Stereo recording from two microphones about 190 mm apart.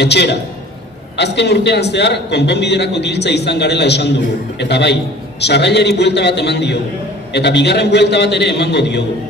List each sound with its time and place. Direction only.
0.0 s a man's voice: 60° left (ahead or behind)